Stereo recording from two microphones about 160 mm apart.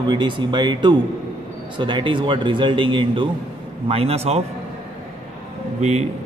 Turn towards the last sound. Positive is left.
turn(degrees=-45)  # may be behind; listen again after turning